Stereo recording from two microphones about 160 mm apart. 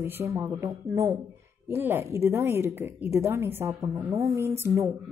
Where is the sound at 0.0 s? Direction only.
15° right (ahead or behind).